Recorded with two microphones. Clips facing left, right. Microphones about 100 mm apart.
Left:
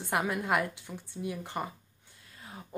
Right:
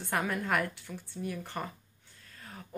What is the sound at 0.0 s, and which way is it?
A woman's voice, 15° left (ahead or behind).